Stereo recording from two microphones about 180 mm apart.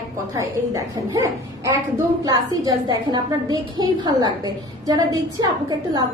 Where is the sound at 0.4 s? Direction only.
15° right (ahead or behind).